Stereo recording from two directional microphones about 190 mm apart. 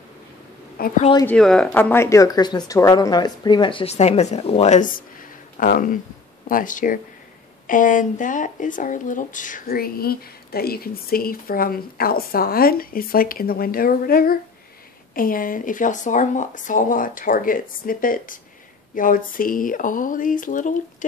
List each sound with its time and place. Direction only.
0.8 s speech: 50° left (ahead or behind)
1.2 s speech: 5° left (ahead or behind); by 20.7 s 45° left (ahead or behind)